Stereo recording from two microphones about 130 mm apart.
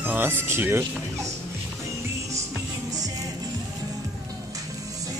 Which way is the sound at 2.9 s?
30° right (ahead or behind).